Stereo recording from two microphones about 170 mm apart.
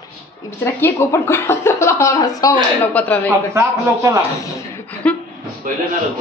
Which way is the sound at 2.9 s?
10° left (ahead or behind).